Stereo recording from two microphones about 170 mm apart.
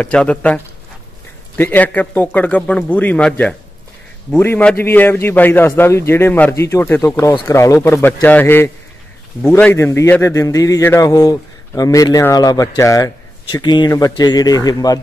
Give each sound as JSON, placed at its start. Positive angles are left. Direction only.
{"t": 0.0, "sound": "a man's voice", "side_deg": 5}
{"t": 1.6, "sound": "a man's voice", "side_deg": 10}